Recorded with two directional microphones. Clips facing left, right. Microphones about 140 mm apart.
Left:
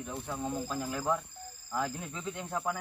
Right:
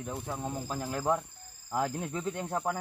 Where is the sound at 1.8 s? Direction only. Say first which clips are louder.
Right 4 dB; 45° right (ahead or behind).